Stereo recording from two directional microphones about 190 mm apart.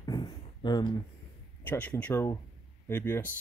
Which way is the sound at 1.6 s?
10° left (ahead or behind).